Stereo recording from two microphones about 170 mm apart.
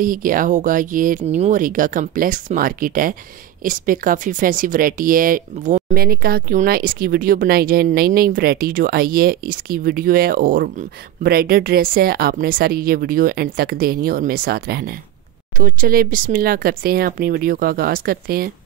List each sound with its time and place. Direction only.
0.0 s speech: 55° right (ahead or behind)
15.5 s speech: 55° right (ahead or behind)